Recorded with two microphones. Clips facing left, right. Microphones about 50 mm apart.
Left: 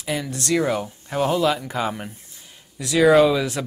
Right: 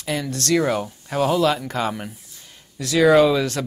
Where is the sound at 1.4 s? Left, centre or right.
Centre.